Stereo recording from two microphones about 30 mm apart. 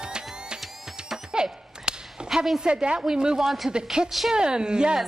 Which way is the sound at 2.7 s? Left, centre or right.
Right.